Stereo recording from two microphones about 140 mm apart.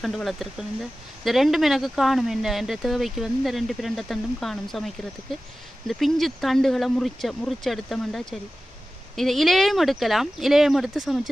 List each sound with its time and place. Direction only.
0.0 s speech: centre (ahead or behind)